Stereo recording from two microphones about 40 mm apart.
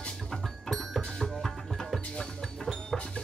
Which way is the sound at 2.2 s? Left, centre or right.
Centre.